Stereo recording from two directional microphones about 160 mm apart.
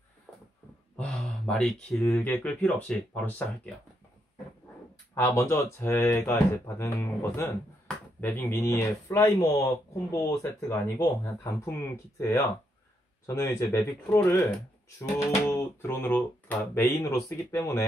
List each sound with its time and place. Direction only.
0.3 s a sound: 10° left (ahead or behind)
0.9 s speech: 5° left (ahead or behind)
5.1 s speech: 15° left (ahead or behind)